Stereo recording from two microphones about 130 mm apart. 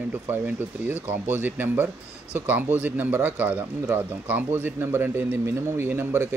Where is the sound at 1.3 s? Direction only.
15° right (ahead or behind).